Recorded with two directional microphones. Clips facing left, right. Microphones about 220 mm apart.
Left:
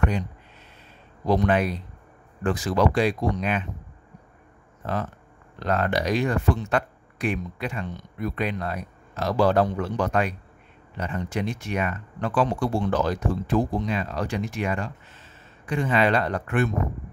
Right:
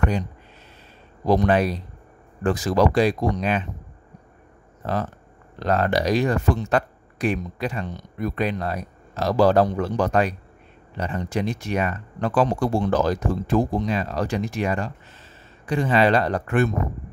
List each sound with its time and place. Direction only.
1.2 s speech: 40° right (ahead or behind)
5.6 s speech: 35° right (ahead or behind)